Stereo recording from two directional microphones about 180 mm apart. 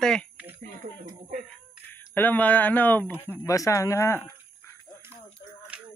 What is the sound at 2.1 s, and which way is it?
Speech, 10° left (ahead or behind).